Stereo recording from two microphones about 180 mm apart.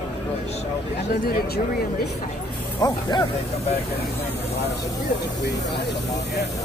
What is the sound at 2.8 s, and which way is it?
Speech, 25° left (ahead or behind).